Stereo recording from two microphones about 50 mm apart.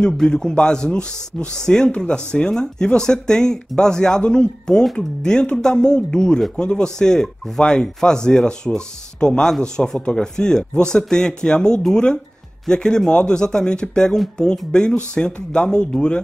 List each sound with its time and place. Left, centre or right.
0.0 s speech: centre